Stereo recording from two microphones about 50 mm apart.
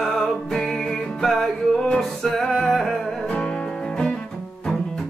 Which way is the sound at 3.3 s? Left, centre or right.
Centre.